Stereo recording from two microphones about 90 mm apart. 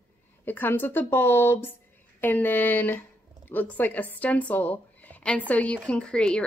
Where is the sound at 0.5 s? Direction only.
25° left (ahead or behind).